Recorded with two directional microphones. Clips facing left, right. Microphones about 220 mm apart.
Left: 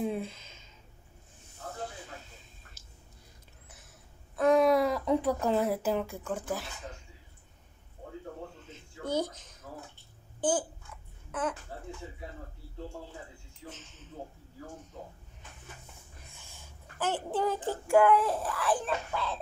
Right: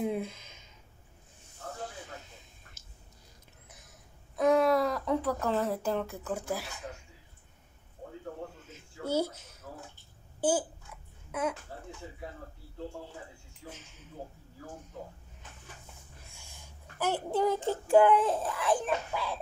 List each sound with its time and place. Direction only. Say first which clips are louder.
0.0 s speech: right 1 dB; 10° right (ahead or behind)
4.6 s speech: left 2 dB; 5° left (ahead or behind)
6.2 s speech: even; 10° right (ahead or behind)
8.6 s a sound: right 1 dB; 10° right (ahead or behind)
10.4 s speech: right 1 dB; 10° right (ahead or behind)
13.7 s speech: even; 10° right (ahead or behind)
17.0 s speech: right 2 dB; 10° right (ahead or behind)
17.6 s child singing: right 2 dB; 15° left (ahead or behind)
17.9 s speech: right 1 dB; 20° right (ahead or behind)